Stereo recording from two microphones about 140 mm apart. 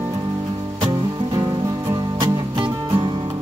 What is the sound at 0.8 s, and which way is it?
Music, 30° right (ahead or behind).